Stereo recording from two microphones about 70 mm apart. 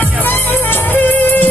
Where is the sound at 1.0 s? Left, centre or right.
Left.